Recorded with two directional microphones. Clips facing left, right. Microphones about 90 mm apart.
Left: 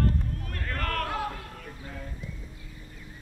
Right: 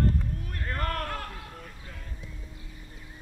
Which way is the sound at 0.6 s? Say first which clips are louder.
Left 1 dB; 25° right (ahead or behind).